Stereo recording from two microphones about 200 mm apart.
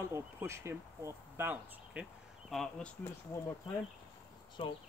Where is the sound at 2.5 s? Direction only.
5° left (ahead or behind).